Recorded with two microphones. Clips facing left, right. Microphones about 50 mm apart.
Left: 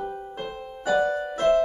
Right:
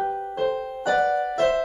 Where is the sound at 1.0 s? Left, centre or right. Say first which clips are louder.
Right 5 dB; right.